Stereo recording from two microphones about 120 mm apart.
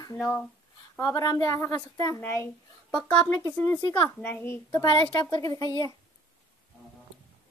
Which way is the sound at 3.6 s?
25° left (ahead or behind).